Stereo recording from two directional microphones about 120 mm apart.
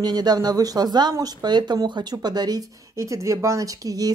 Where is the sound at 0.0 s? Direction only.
35° right (ahead or behind).